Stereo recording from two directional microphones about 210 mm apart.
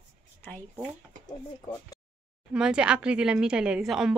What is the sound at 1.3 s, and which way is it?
Speech, 20° left (ahead or behind).